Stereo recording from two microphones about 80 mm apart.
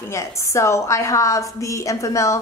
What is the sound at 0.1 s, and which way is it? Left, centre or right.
A woman's voice, left.